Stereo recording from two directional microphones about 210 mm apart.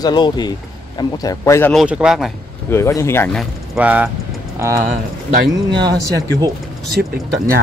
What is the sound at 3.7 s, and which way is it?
Speech, 5° right (ahead or behind).